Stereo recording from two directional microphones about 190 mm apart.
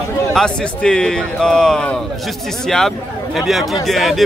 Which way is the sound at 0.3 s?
5° left (ahead or behind).